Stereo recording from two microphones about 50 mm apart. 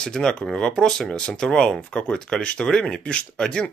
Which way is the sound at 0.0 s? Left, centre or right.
Centre.